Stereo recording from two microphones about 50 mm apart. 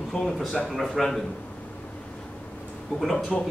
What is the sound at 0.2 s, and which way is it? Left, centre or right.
Speech, left.